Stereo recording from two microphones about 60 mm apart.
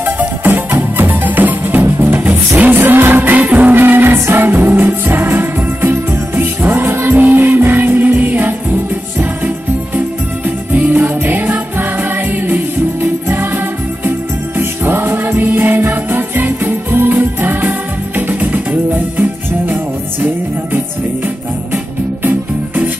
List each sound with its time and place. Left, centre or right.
0.0 s music: right
10.7 s music: right
14.6 s music: right